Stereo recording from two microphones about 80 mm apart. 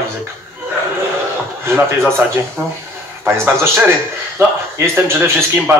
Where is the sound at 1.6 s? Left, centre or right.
Right.